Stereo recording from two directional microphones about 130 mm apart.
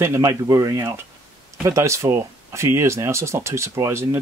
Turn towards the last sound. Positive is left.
turn(degrees=-20)  # may be behind; listen again after turning